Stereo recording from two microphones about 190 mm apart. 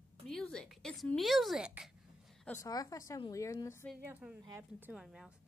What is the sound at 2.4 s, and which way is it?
Speech, 10° left (ahead or behind).